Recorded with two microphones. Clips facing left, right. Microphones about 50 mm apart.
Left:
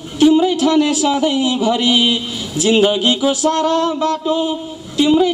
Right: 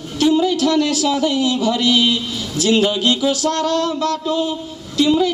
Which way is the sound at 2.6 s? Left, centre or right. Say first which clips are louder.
Left 3 dB; left.